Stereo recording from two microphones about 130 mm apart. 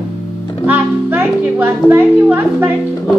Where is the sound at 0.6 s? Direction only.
15° right (ahead or behind).